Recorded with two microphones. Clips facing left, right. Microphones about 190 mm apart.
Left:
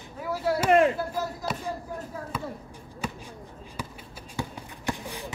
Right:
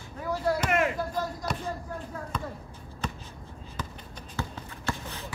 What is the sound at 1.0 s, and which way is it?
Speech, 5° left (ahead or behind).